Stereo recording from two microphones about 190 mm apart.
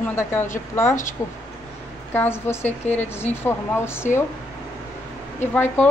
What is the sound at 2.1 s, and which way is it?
A woman's voice, 10° left (ahead or behind).